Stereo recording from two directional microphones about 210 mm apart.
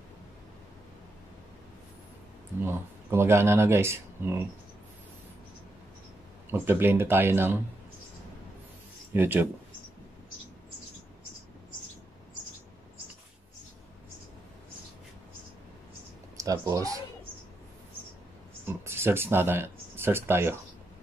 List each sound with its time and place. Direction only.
2.6 s speech: 10° right (ahead or behind)
6.5 s speech: 10° right (ahead or behind)
9.1 s speech: 10° right (ahead or behind)
16.3 s speech: 15° right (ahead or behind)
18.7 s speech: 10° right (ahead or behind)